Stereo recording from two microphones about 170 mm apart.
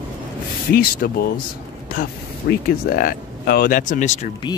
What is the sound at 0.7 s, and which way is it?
Speech, 60° left (ahead or behind).